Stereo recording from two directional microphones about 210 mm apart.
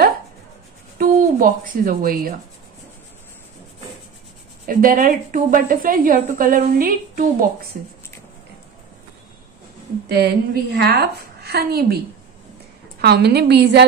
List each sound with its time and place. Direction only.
0.9 s speech: 40° right (ahead or behind)
4.6 s a woman's voice: 40° right (ahead or behind)
10.0 s a woman's voice: 50° right (ahead or behind)
13.0 s a woman's voice: 50° right (ahead or behind)